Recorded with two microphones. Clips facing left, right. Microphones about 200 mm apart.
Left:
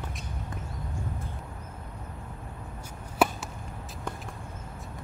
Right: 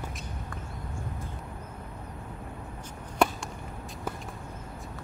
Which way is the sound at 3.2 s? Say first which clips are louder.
Even; 5° left (ahead or behind).